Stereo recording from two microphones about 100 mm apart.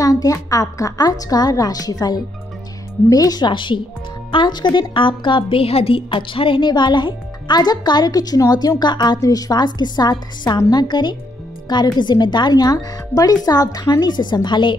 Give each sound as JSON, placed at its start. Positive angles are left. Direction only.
{"t": 0.0, "sound": "a woman's voice", "side_deg": 35}